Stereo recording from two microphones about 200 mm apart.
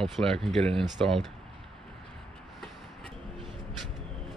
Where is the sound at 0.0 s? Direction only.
Centre (ahead or behind).